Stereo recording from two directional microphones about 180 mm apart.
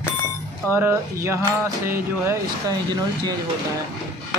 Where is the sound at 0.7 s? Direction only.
15° right (ahead or behind).